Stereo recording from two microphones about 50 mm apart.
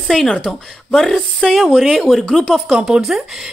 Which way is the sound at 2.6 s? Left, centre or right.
Centre.